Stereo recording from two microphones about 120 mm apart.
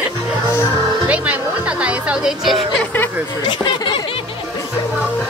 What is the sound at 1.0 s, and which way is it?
Speech, 10° right (ahead or behind).